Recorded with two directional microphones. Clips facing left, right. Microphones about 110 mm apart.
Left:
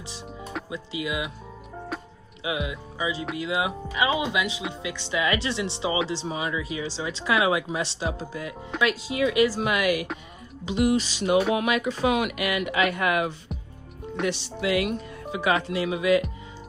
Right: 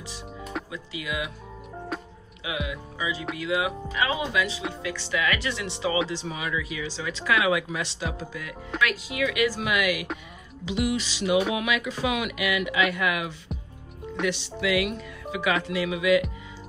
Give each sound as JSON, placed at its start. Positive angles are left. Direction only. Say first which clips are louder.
{"t": 0.7, "sound": "speech", "louder": "left 3 dB", "side_deg": 25}
{"t": 1.9, "sound": "music", "louder": "right 1 dB", "side_deg": 0}
{"t": 2.4, "sound": "speech", "louder": "left 2 dB", "side_deg": 25}
{"t": 13.5, "sound": "music", "louder": "even", "side_deg": 0}
{"t": 14.2, "sound": "speech", "louder": "even", "side_deg": 40}